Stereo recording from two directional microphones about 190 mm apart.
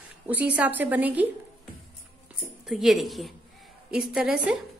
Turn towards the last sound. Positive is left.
turn(degrees=-5)  # may be behind; listen again after turning